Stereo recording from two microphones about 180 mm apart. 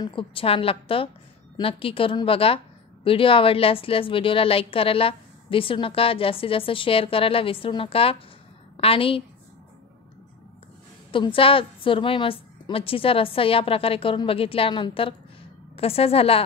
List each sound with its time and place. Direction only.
0.0 s a woman's voice: 30° left (ahead or behind)
11.1 s a woman's voice: 30° left (ahead or behind)